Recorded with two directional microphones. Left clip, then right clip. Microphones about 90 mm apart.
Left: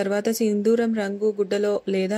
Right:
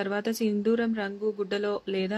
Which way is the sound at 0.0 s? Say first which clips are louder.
Left 6 dB; 40° left (ahead or behind).